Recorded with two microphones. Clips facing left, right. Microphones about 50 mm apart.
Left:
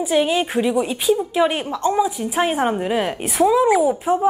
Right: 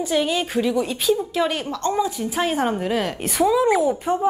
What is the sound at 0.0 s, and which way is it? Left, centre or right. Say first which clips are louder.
A woman's voice: left 3 dB; centre.